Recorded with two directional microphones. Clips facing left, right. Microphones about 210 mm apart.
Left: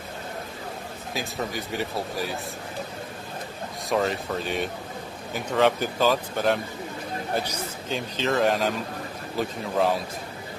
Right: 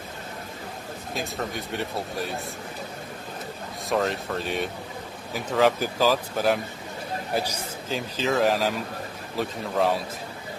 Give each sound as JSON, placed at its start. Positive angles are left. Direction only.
{"t": 1.1, "sound": "a man's voice", "side_deg": 0}
{"t": 3.9, "sound": "a man's voice", "side_deg": 0}